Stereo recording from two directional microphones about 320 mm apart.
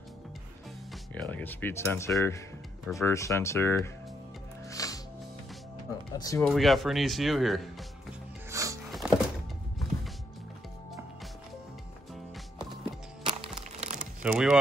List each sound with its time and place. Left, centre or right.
1.1 s speech: centre
4.6 s music: centre
6.1 s speech: centre
8.5 s music: centre
13.2 s music: centre
14.2 s speech: centre